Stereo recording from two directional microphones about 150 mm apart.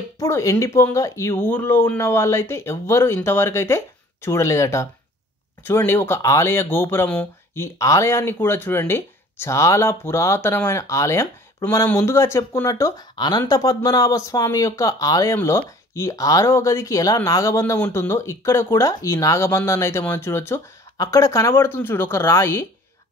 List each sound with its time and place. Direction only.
0.2 s speech: 20° left (ahead or behind)